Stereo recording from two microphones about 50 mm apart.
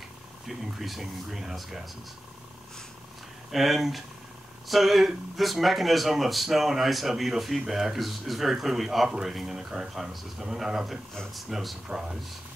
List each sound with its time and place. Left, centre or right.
0.5 s speech: centre
3.5 s speech: centre